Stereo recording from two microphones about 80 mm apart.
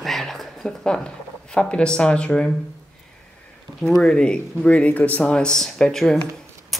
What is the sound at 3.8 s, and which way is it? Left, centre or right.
Speech, centre.